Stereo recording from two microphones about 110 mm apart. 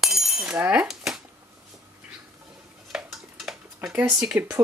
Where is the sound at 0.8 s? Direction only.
Centre (ahead or behind).